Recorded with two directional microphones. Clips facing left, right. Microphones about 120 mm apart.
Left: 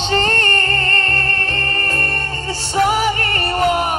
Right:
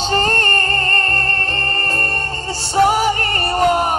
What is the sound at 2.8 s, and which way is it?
Music, 35° right (ahead or behind).